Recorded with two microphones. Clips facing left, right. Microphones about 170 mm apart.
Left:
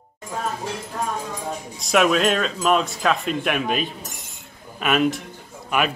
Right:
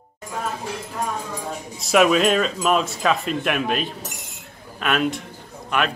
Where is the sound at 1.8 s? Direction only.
Centre (ahead or behind).